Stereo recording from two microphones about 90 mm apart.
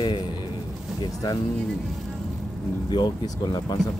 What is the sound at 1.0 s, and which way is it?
Speech, 45° left (ahead or behind).